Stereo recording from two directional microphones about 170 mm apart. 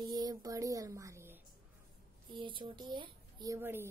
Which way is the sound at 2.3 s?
30° right (ahead or behind).